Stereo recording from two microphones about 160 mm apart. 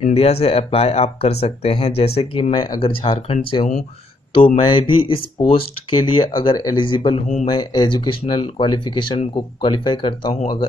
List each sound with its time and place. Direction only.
0.0 s speech: 40° left (ahead or behind)
4.6 s speech: 30° left (ahead or behind)
7.4 s speech: 30° left (ahead or behind)